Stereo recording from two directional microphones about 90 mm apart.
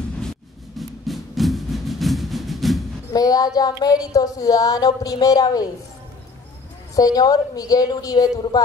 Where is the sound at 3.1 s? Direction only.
45° left (ahead or behind).